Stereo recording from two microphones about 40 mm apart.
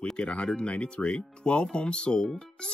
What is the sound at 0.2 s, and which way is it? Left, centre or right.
Speech, left.